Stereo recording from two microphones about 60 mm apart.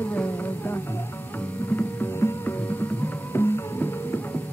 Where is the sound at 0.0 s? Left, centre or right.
Left.